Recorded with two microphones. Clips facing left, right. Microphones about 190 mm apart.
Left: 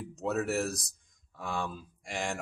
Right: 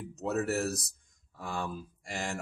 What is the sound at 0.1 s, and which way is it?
Speech, centre (ahead or behind).